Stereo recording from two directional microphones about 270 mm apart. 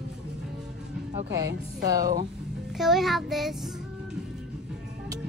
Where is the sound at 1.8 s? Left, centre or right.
Centre.